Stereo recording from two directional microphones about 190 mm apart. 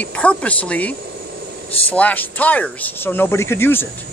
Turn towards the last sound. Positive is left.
turn(degrees=10)  # may be behind; listen again after turning